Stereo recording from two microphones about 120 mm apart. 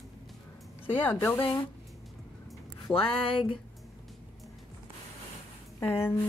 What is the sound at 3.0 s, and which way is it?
Speech, 45° left (ahead or behind).